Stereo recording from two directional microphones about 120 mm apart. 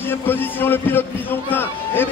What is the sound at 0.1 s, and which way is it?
A man's voice, 15° left (ahead or behind).